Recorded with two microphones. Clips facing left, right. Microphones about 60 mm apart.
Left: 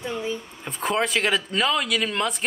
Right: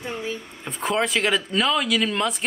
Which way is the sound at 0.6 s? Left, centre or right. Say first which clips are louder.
Right 1 dB; centre.